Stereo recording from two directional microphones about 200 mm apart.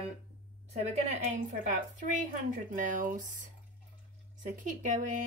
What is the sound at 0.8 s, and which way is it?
A woman's voice, 40° right (ahead or behind).